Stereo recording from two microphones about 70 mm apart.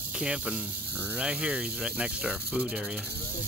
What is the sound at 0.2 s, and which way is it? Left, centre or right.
Cricket, centre.